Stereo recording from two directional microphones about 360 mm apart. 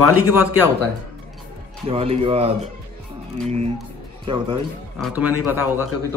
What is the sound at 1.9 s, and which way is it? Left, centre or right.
Speech, centre.